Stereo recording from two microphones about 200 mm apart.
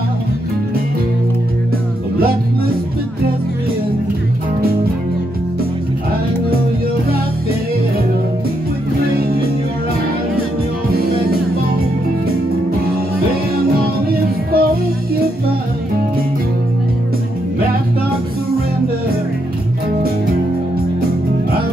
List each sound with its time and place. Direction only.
2.1 s music: 50° right (ahead or behind)
13.7 s music: 50° right (ahead or behind)